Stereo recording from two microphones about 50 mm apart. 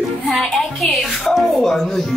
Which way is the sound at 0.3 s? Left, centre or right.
Centre.